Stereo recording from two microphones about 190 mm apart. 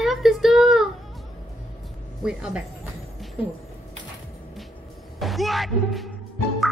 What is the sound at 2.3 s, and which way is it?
Speech, 5° right (ahead or behind).